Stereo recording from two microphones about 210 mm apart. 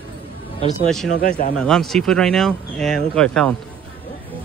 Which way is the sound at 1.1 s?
35° left (ahead or behind).